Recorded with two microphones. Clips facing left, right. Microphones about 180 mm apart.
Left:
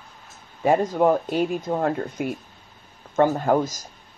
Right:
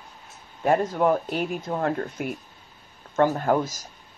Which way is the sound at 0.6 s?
Centre (ahead or behind).